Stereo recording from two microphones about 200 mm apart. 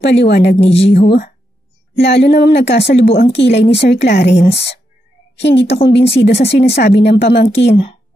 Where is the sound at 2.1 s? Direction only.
55° left (ahead or behind).